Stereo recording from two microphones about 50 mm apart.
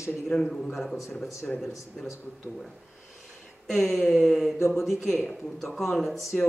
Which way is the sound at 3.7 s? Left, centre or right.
Centre.